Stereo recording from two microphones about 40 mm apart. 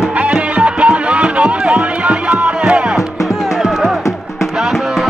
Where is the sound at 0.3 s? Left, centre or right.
Right.